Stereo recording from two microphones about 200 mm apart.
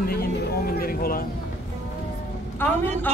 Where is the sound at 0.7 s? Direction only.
45° left (ahead or behind).